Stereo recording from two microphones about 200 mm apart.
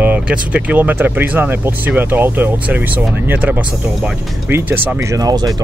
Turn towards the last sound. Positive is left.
turn(degrees=-20)  # may be behind; listen again after turning